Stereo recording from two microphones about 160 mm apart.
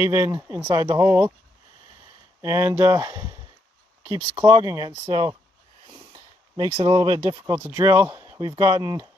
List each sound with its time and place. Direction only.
0.0 s speech: 20° right (ahead or behind)
2.4 s speech: 15° right (ahead or behind)
6.1 s a sound: 30° right (ahead or behind)
7.2 s speech: 25° right (ahead or behind)